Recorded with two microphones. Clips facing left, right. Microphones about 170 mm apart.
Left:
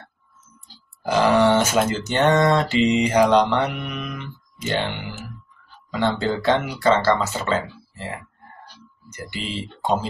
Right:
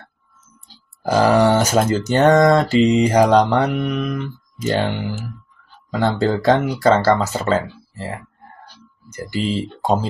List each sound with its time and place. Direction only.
1.0 s speech: 40° right (ahead or behind)
9.1 s speech: 40° right (ahead or behind)